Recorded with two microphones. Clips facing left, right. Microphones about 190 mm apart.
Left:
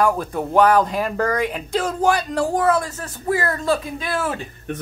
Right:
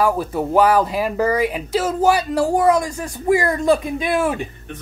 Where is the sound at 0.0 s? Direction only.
5° right (ahead or behind).